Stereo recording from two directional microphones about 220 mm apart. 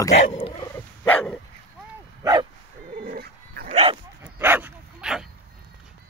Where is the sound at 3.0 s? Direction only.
40° right (ahead or behind).